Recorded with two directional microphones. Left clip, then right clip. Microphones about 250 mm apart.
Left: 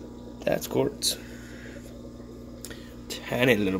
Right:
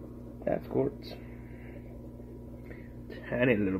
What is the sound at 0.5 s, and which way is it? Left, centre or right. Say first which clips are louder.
Speech: left 5 dB; left.